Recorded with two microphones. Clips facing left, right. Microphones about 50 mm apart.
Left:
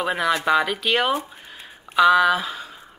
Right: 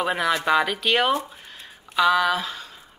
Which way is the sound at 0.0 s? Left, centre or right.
Centre.